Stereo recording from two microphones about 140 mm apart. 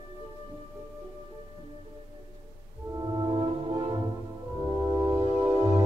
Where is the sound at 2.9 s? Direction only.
30° right (ahead or behind).